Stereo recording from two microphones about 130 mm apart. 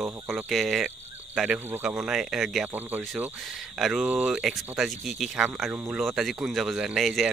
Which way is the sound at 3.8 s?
Centre (ahead or behind).